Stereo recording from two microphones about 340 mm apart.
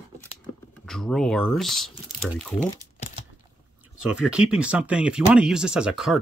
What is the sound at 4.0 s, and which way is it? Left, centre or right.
Speech, centre.